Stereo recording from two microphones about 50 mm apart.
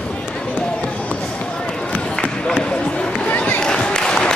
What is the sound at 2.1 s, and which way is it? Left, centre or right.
Run, centre.